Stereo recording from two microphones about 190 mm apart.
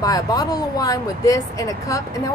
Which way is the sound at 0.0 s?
20° left (ahead or behind).